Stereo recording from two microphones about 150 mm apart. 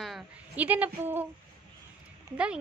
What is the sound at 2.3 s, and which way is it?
Speech, 10° right (ahead or behind).